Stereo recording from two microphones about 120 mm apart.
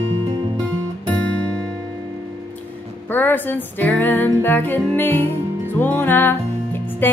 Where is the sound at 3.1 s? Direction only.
15° left (ahead or behind).